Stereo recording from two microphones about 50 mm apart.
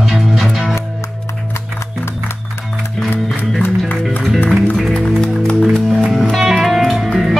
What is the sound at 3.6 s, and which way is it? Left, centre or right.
Music, left.